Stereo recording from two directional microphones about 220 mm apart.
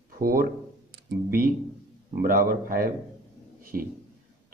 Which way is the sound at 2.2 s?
40° right (ahead or behind).